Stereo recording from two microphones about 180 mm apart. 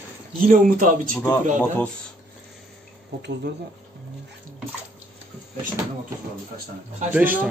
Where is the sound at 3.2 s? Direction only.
70° right (ahead or behind).